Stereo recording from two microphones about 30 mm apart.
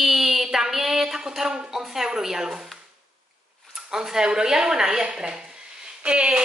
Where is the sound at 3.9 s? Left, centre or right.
Centre.